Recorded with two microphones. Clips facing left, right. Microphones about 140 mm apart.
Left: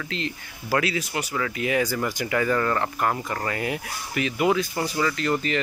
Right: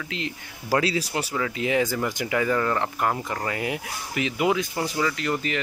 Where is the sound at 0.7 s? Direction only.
35° right (ahead or behind).